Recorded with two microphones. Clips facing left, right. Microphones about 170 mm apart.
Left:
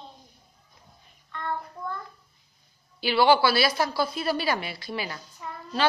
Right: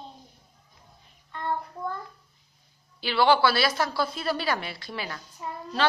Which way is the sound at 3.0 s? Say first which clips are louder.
Left 1 dB; 10° left (ahead or behind).